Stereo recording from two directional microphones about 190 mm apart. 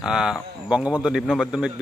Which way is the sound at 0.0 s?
5° right (ahead or behind).